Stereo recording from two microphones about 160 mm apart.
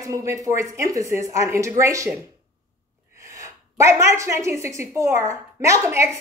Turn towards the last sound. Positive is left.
turn(degrees=-20)  # may be behind; listen again after turning